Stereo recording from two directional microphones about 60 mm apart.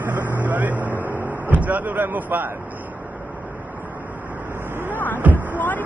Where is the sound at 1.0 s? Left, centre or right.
Right.